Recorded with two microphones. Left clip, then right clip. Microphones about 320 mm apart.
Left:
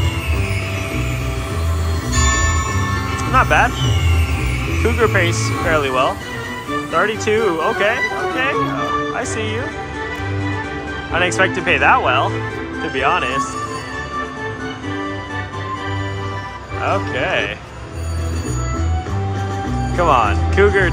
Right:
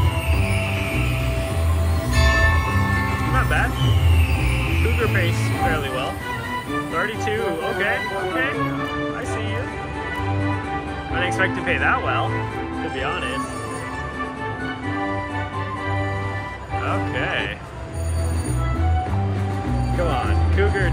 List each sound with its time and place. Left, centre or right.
3.3 s music: centre
5.0 s speech: centre
11.1 s speech: centre
16.8 s speech: centre
20.1 s speech: centre